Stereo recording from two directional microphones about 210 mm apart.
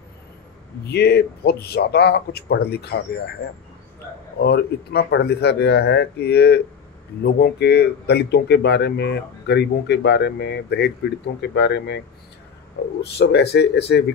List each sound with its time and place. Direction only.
0.8 s speech: 50° left (ahead or behind)
4.4 s speech: 50° left (ahead or behind)
13.0 s speech: 50° left (ahead or behind)